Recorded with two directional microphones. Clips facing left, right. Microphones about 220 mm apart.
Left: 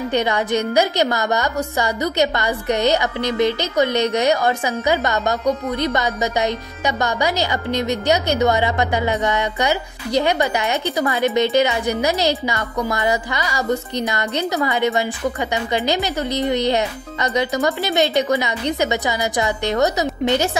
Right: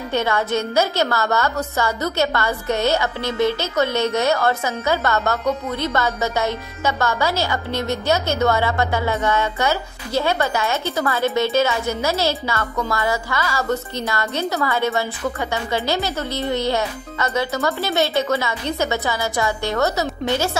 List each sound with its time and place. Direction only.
0.1 s a woman's voice: 15° left (ahead or behind)